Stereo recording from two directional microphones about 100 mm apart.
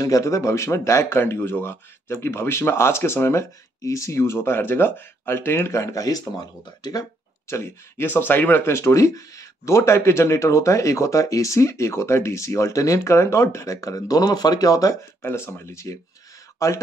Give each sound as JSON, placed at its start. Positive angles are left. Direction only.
{"t": 0.0, "sound": "speech", "side_deg": 35}
{"t": 7.4, "sound": "speech", "side_deg": 25}
{"t": 15.2, "sound": "speech", "side_deg": 25}